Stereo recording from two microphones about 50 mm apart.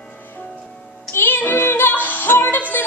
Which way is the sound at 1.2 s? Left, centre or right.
Left.